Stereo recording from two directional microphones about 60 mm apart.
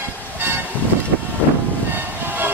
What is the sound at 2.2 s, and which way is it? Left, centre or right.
Train, right.